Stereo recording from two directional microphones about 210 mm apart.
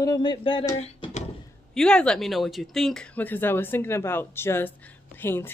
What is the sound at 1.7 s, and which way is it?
A woman's voice, 5° left (ahead or behind).